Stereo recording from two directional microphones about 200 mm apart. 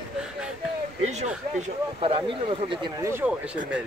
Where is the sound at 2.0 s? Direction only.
25° right (ahead or behind).